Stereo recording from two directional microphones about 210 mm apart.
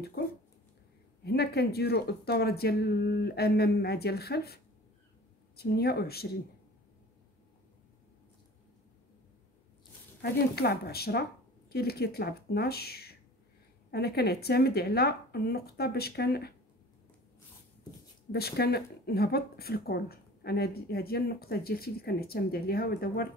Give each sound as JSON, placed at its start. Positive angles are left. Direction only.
{"t": 0.2, "sound": "dog", "side_deg": 45}
{"t": 1.2, "sound": "speech", "side_deg": 50}
{"t": 5.6, "sound": "speech", "side_deg": 50}
{"t": 10.2, "sound": "speech", "side_deg": 50}
{"t": 18.3, "sound": "speech", "side_deg": 50}